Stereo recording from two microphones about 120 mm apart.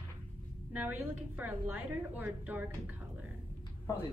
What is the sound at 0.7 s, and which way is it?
A woman's voice, 10° right (ahead or behind).